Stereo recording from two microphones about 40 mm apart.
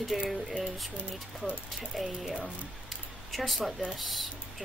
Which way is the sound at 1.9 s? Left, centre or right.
Centre.